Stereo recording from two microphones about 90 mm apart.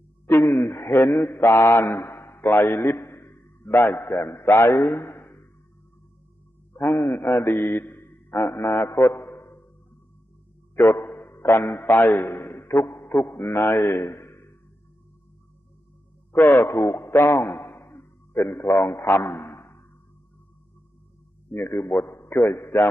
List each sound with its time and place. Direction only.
0.3 s a man's voice: 25° left (ahead or behind)
6.8 s a man's voice: 25° left (ahead or behind)
7.3 s mantra: 25° left (ahead or behind)
8.6 s mantra: 10° left (ahead or behind)
8.9 s a sound: 25° left (ahead or behind)
10.8 s a man's voice: 25° left (ahead or behind)
13.0 s a man's voice: 20° left (ahead or behind)
13.8 s a man's voice: 25° left (ahead or behind)
16.3 s a man's voice: 25° left (ahead or behind)
22.0 s a man's voice: 25° left (ahead or behind)